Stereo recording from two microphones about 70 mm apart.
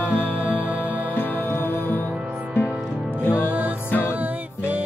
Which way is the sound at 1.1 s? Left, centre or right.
Left.